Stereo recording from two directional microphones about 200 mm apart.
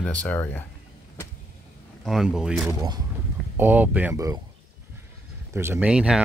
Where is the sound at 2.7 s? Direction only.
20° right (ahead or behind).